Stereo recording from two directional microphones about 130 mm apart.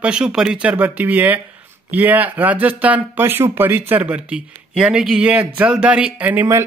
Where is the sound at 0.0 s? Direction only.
5° right (ahead or behind).